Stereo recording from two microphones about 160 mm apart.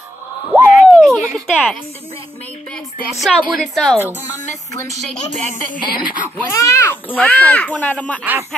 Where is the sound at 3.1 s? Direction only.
Centre (ahead or behind).